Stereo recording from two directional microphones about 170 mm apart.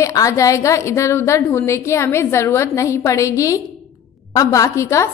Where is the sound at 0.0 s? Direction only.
20° left (ahead or behind).